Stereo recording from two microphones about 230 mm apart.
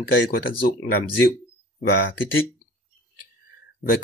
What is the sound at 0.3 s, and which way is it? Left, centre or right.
Speech, left.